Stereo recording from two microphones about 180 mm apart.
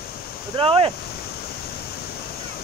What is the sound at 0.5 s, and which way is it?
Speech, 30° right (ahead or behind).